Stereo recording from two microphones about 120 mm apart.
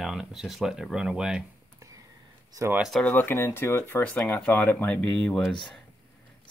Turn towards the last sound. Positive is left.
turn(degrees=5)  # may be behind; listen again after turning